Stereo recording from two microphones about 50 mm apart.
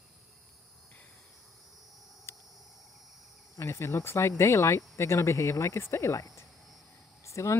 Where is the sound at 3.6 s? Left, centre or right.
Left.